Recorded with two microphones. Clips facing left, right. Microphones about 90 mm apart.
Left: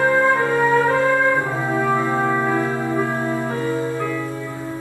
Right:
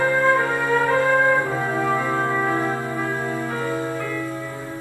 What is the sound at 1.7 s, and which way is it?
Brass instrument, 20° left (ahead or behind).